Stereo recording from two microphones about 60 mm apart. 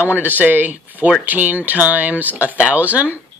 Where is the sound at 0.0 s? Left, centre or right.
Right.